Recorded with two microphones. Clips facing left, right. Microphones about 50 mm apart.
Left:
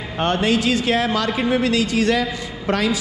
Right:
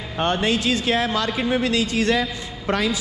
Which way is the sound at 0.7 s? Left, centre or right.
Left.